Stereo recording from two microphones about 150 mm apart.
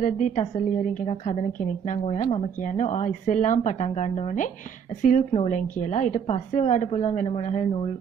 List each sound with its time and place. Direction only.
0.0 s a woman's voice: 55° left (ahead or behind)